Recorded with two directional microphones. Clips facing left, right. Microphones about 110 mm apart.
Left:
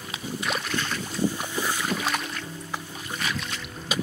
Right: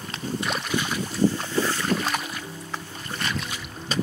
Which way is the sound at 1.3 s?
15° left (ahead or behind).